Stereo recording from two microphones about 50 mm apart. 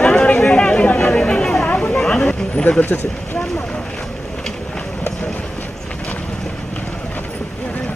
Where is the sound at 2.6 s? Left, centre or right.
Left.